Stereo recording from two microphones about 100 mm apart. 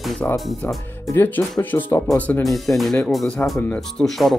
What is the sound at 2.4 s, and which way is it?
Speech, centre (ahead or behind).